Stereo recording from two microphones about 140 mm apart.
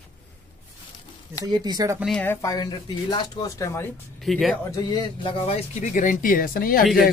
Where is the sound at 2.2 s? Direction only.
25° left (ahead or behind).